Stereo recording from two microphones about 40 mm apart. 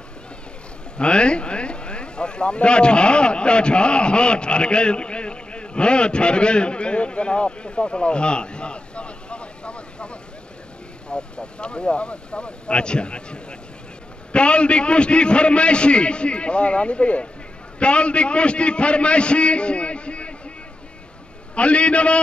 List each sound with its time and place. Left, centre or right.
0.9 s a man's voice: left
21.5 s a man's voice: left